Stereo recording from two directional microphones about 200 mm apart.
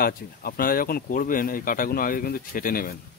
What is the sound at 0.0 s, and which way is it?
Speech, 45° left (ahead or behind).